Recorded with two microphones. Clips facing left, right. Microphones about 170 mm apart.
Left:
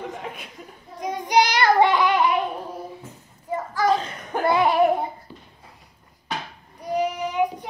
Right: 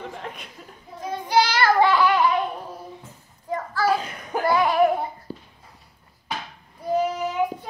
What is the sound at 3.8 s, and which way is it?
Chuckle, 10° right (ahead or behind).